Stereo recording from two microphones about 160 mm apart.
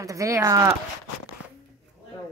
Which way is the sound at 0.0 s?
20° right (ahead or behind).